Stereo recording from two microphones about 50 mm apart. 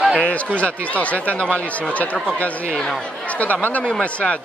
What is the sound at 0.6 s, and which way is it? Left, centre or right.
Speech, left.